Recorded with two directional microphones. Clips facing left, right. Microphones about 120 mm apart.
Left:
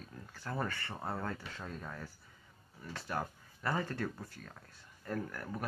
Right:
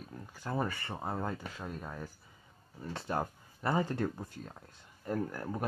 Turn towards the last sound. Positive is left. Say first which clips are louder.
# right 5 dB
turn(degrees=-25)  # may be behind; listen again after turning